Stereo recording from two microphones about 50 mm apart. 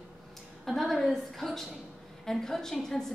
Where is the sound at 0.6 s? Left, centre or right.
Centre.